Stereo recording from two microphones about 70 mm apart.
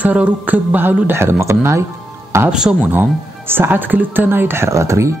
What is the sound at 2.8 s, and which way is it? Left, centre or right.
Speech, right.